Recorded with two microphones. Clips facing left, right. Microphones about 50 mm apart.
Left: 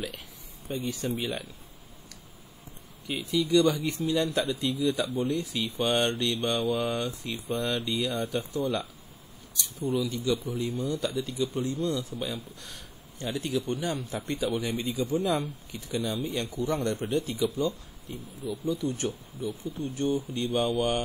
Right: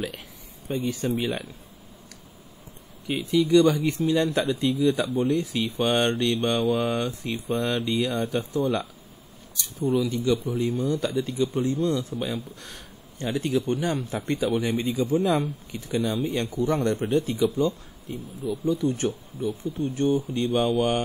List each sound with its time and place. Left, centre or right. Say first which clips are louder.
0.7 s speech: right 5 dB; right
3.1 s speech: right 5 dB; right
9.8 s a man's voice: right 5 dB; right